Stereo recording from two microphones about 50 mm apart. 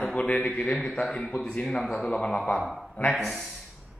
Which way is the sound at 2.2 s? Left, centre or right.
Left.